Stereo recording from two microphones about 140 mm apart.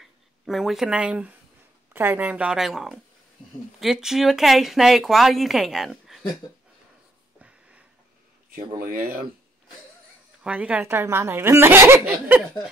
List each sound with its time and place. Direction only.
0.0 s a woman's voice: centre (ahead or behind)
7.3 s a sound: 10° right (ahead or behind)
8.5 s speech: 90° right
10.4 s a woman's voice: 10° right (ahead or behind)